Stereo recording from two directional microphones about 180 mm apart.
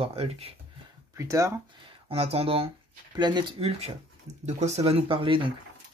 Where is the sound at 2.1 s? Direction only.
35° right (ahead or behind).